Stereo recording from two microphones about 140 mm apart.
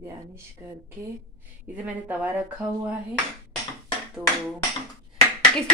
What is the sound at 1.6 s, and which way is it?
Speech, 10° right (ahead or behind).